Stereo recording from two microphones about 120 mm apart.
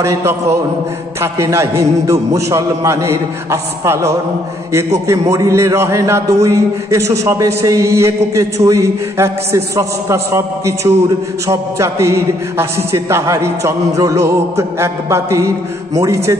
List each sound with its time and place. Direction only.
0.0 s a man's voice: 25° right (ahead or behind)